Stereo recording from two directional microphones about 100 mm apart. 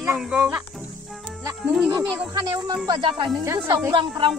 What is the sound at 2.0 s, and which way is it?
Speech, 45° right (ahead or behind).